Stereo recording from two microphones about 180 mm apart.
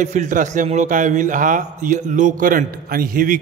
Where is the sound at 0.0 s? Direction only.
45° right (ahead or behind).